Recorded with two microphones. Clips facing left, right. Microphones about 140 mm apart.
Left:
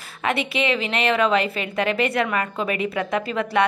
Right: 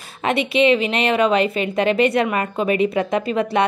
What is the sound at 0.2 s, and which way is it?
A woman's voice, 20° right (ahead or behind).